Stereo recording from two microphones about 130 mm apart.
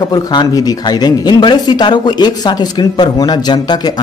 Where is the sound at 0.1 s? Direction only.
30° left (ahead or behind).